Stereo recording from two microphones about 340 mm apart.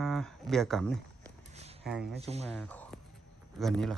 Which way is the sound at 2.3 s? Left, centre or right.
Centre.